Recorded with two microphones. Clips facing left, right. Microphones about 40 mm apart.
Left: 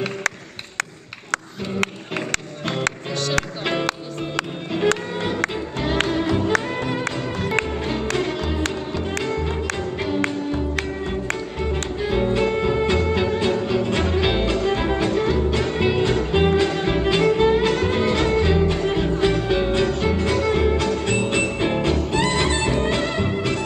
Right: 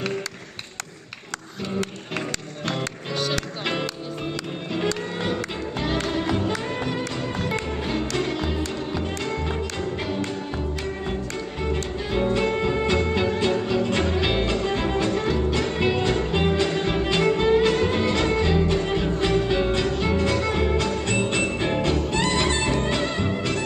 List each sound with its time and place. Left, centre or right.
6.0 s music: centre
11.6 s music: centre